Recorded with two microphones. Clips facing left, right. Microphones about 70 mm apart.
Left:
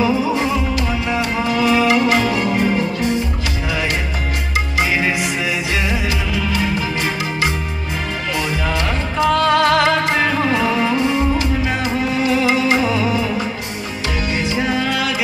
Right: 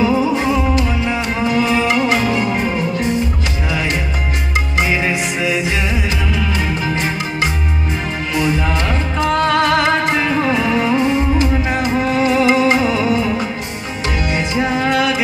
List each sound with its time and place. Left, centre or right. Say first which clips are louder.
0.4 s music: right 3 dB; right
5.4 s music: right 2 dB; right
8.4 s music: right 4 dB; right
14.3 s music: right 1 dB; right